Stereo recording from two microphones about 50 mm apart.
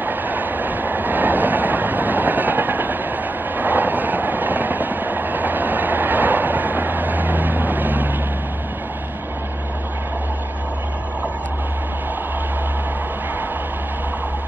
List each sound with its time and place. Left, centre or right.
0.0 s train: right